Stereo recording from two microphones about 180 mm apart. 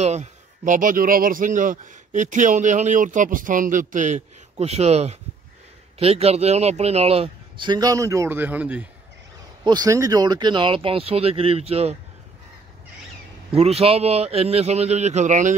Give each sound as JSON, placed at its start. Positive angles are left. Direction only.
{"t": 0.0, "sound": "speech", "side_deg": -40}
{"t": 9.7, "sound": "speech", "side_deg": -20}
{"t": 13.5, "sound": "speech", "side_deg": -35}